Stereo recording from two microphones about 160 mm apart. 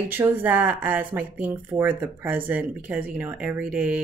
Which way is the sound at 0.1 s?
10° right (ahead or behind).